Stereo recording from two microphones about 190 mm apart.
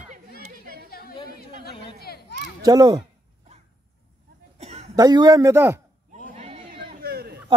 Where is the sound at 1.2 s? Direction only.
55° left (ahead or behind).